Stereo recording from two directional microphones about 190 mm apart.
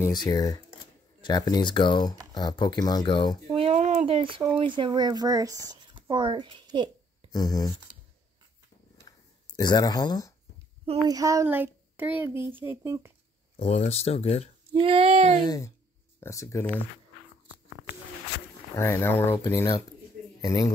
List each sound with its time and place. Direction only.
0.0 s speech: 20° left (ahead or behind)
3.5 s a sound: 35° right (ahead or behind)
4.1 s speech: 25° right (ahead or behind)
5.7 s a sound: 25° right (ahead or behind)
7.3 s speech: 20° left (ahead or behind)
9.0 s a sound: 20° left (ahead or behind)
11.1 s speech: 20° right (ahead or behind)
13.6 s speech: 35° left (ahead or behind)
14.7 s speech: 30° right (ahead or behind)
15.4 s speech: 20° left (ahead or behind)
18.8 s speech: 10° left (ahead or behind)